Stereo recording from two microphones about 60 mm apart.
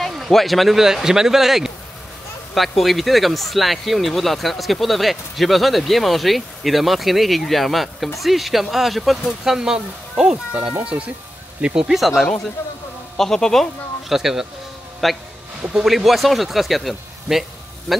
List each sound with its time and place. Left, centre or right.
0.1 s speech: centre
10.8 s speech: right
12.0 s speech: centre
14.1 s speech: centre